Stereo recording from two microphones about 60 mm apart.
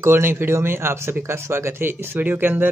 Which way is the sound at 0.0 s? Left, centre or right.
Right.